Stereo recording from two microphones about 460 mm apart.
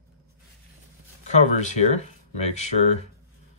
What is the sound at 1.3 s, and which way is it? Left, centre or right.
Speech, centre.